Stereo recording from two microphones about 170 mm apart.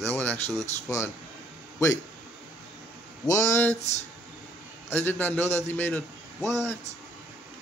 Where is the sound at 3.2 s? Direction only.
15° left (ahead or behind).